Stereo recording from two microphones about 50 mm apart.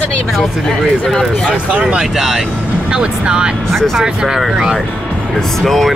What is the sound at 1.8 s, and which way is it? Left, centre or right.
Speech, right.